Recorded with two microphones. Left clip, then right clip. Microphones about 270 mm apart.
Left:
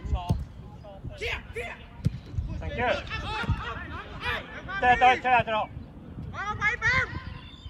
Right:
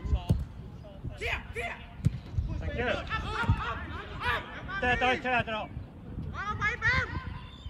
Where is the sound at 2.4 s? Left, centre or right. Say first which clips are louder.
Left 5 dB; centre.